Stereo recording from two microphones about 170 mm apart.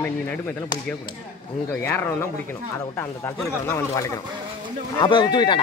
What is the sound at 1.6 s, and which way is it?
Speech, 15° left (ahead or behind).